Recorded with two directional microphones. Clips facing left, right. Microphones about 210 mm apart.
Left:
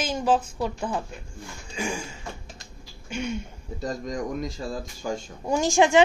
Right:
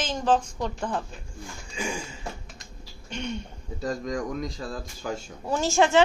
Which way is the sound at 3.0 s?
10° left (ahead or behind).